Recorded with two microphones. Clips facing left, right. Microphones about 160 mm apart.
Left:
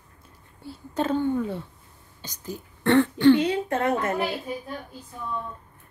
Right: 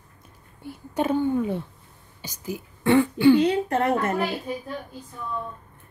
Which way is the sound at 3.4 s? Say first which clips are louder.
Right 3 dB; 35° right (ahead or behind).